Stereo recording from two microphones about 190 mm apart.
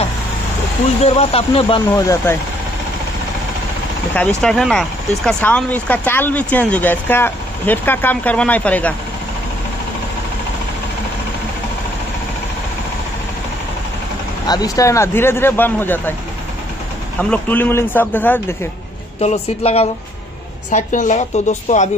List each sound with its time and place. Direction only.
1.0 s speech: 30° left (ahead or behind)
4.1 s speech: 5° left (ahead or behind)
14.4 s speech: 20° left (ahead or behind)
17.2 s speech: 5° left (ahead or behind)
19.2 s speech: 35° left (ahead or behind)